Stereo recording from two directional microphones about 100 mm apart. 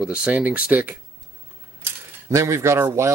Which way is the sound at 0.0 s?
10° right (ahead or behind).